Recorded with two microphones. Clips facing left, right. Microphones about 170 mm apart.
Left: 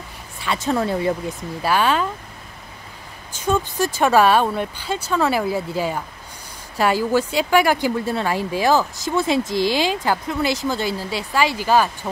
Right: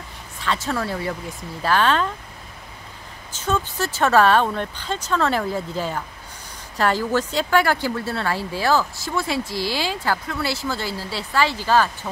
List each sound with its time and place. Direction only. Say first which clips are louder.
0.4 s speech: left 3 dB; 15° left (ahead or behind)
1.6 s speech: even; 10° left (ahead or behind)
3.3 s speech: left 3 dB; 15° left (ahead or behind)